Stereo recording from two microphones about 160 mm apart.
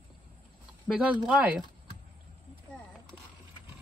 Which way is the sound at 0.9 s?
5° right (ahead or behind).